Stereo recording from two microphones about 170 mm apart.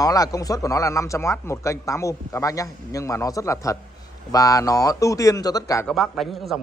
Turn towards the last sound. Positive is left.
turn(degrees=0)  # may be behind; listen again after turning